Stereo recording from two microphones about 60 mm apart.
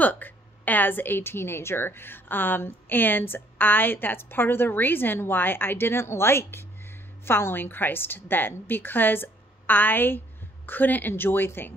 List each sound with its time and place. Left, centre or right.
0.0 s a woman's voice: left